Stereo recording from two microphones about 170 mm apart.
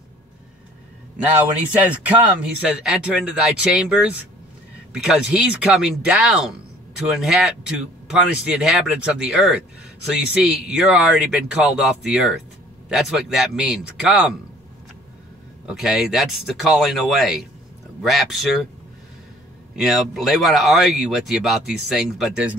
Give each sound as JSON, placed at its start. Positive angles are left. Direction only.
{"t": 1.8, "sound": "speech", "side_deg": -10}
{"t": 15.6, "sound": "speech", "side_deg": 0}
{"t": 19.7, "sound": "speech", "side_deg": 0}